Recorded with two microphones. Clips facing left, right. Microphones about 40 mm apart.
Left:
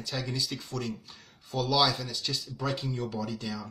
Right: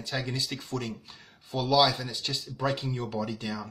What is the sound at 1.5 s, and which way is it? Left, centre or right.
Speech, right.